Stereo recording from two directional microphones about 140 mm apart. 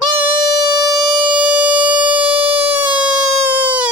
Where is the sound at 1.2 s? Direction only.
35° right (ahead or behind).